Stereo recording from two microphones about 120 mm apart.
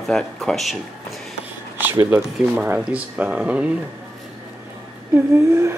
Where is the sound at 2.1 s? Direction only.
10° right (ahead or behind).